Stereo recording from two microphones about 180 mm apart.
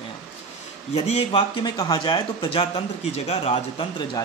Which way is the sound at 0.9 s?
35° left (ahead or behind).